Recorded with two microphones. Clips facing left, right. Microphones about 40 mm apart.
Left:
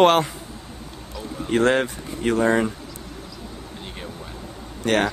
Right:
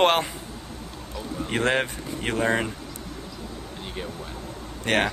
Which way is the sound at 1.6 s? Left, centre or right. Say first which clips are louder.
Left 5 dB; right.